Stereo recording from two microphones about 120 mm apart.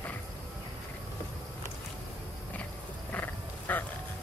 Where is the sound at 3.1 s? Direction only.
15° left (ahead or behind).